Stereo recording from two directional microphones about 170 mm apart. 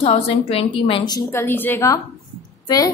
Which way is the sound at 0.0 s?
35° left (ahead or behind).